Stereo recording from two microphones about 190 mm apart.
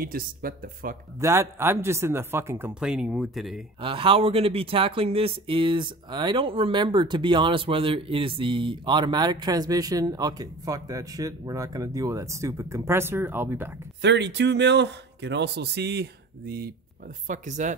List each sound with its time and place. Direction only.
0.0 s speech: 50° right (ahead or behind)
1.2 s speech: 15° right (ahead or behind)
3.8 s speech: 30° right (ahead or behind); by 13.7 s 10° right (ahead or behind)
14.0 s speech: 65° right (ahead or behind)
17.3 s speech: 40° right (ahead or behind)